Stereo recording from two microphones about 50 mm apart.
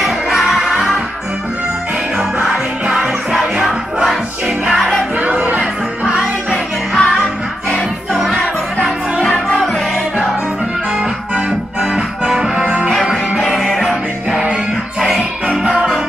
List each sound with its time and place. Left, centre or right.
0.0 s music: centre
3.6 s music: centre
5.2 s music: right
6.5 s music: centre
8.1 s music: centre
11.8 s music: centre
13.4 s music: centre